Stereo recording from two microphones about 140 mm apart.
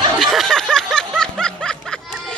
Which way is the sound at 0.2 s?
Centre (ahead or behind).